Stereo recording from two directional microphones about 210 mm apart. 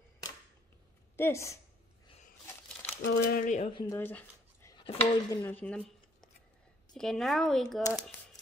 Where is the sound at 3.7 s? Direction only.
25° left (ahead or behind).